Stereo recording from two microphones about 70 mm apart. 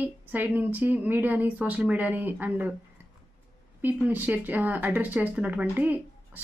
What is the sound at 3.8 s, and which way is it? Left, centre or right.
A woman's voice, right.